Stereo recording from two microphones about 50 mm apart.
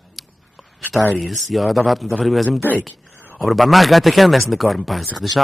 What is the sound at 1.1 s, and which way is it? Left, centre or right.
A man's voice, centre.